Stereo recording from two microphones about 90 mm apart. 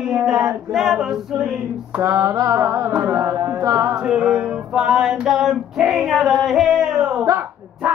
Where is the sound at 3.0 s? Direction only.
30° right (ahead or behind).